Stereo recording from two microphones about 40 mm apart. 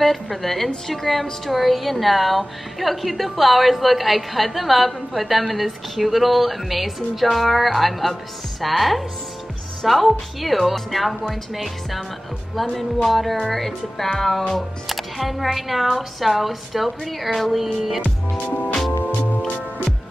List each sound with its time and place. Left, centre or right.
0.0 s a woman's voice: centre
18.5 s music: left